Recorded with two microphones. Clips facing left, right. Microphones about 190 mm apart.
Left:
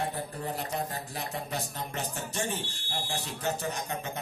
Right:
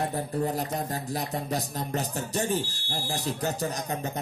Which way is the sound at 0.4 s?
40° right (ahead or behind).